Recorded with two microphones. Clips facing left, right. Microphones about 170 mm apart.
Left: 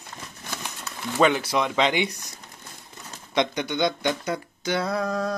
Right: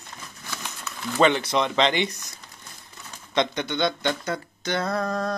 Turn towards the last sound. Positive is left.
turn(degrees=10)  # may be behind; listen again after turning